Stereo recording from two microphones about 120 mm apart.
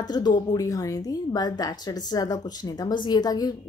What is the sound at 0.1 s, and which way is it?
A woman's voice, 35° left (ahead or behind).